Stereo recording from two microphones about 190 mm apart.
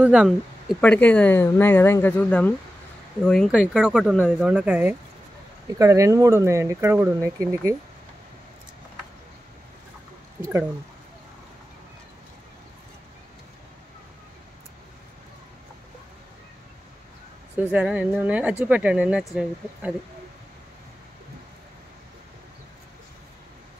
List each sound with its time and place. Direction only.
0.0 s speech: 5° right (ahead or behind)
17.6 s speech: 5° right (ahead or behind)